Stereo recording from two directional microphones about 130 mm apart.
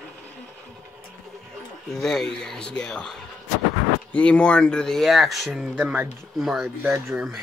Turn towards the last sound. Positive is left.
turn(degrees=0)  # may be behind; listen again after turning